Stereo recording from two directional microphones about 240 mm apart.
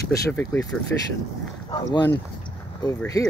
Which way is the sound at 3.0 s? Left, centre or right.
Centre.